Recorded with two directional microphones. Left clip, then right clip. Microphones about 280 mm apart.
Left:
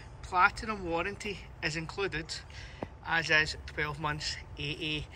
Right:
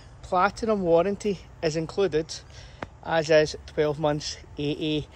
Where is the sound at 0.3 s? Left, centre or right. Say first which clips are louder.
Right 4 dB; centre.